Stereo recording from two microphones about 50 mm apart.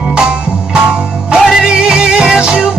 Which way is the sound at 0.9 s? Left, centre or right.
Centre.